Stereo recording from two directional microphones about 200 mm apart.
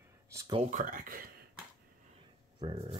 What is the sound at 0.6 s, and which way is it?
Speech, 40° right (ahead or behind).